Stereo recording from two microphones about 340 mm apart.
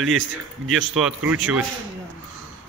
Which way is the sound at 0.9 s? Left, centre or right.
Centre.